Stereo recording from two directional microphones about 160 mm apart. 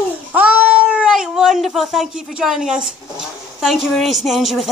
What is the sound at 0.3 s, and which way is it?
Cat, 10° right (ahead or behind).